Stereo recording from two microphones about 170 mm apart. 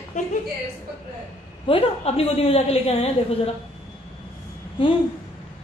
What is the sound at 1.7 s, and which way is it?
A woman's voice, 35° left (ahead or behind).